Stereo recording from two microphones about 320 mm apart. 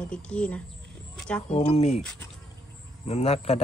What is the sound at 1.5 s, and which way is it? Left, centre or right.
Speech, centre.